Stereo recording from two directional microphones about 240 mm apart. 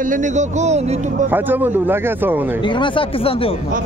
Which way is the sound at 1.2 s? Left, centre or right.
Centre.